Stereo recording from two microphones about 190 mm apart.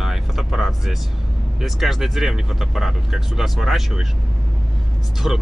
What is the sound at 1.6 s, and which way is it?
Speech, centre (ahead or behind).